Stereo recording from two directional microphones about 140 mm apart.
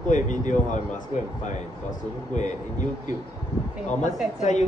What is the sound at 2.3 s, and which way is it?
Speech, 60° left (ahead or behind).